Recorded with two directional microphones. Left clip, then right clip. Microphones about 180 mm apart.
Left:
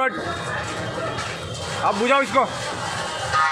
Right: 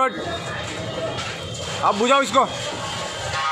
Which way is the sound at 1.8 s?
25° right (ahead or behind).